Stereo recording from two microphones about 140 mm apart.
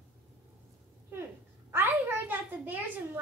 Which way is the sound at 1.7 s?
15° right (ahead or behind).